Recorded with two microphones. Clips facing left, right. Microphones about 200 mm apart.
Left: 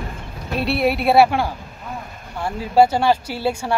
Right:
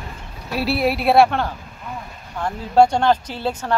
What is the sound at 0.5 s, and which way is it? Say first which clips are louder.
A woman's voice: left 1 dB; centre (ahead or behind).